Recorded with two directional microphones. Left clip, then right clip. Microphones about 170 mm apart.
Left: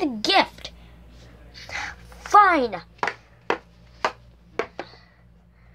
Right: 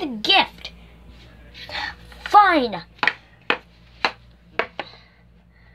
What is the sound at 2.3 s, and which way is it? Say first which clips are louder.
Speech: right 1 dB; 5° right (ahead or behind).